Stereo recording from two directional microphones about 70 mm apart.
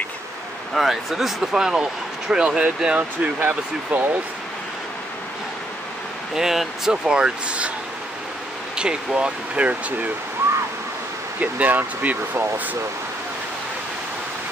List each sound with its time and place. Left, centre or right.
0.7 s speech: centre
3.0 s speech: right
6.3 s speech: centre
8.7 s speech: centre
11.3 s speech: right